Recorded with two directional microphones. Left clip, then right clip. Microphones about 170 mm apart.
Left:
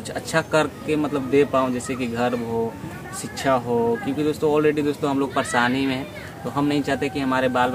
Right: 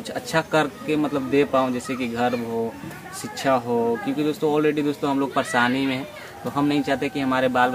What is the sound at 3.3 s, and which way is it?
Speech, 20° left (ahead or behind).